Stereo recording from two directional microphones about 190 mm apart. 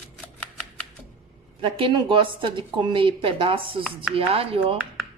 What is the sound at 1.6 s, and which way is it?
Speech, 25° right (ahead or behind).